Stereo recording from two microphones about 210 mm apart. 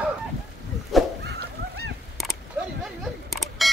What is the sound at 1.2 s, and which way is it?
Honk, 50° right (ahead or behind).